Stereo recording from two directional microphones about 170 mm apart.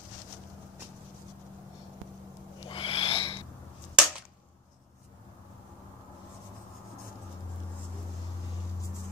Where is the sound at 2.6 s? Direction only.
30° left (ahead or behind).